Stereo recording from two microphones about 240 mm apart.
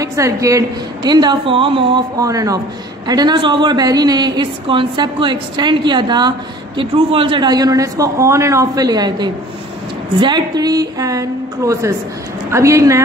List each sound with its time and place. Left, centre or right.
0.0 s a woman's voice: centre